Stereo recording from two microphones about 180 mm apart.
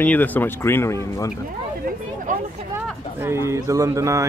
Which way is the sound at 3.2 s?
15° right (ahead or behind).